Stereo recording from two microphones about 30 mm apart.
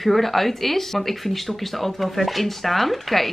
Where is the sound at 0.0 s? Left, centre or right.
Centre.